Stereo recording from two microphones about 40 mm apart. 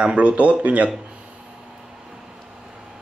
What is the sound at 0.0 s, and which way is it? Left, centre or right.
Speech, right.